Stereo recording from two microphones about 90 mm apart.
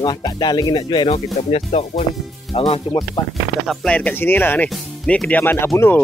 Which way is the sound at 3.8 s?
15° left (ahead or behind).